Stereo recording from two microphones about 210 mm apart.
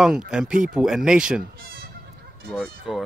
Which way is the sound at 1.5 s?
45° right (ahead or behind).